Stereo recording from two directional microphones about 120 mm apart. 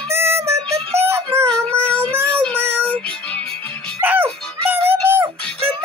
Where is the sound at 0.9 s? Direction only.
20° right (ahead or behind).